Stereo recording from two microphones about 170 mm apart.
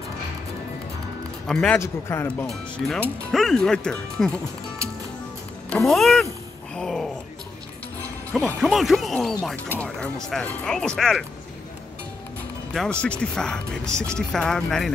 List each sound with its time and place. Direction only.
1.5 s speech: 5° left (ahead or behind)
1.8 s speech: 15° left (ahead or behind)
2.4 s speech: centre (ahead or behind)
5.7 s music: centre (ahead or behind)
6.7 s a sound: 5° left (ahead or behind)
8.5 s speech: centre (ahead or behind)
13.0 s speech: 5° left (ahead or behind)